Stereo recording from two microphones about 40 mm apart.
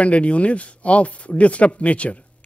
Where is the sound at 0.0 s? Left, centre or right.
Left.